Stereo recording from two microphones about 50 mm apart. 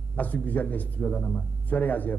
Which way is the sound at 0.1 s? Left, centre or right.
Left.